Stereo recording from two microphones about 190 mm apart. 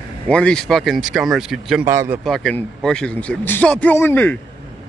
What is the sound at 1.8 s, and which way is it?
Speech, 15° right (ahead or behind).